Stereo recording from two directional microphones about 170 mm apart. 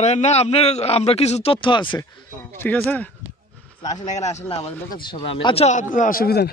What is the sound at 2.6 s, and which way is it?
Speech, 10° left (ahead or behind).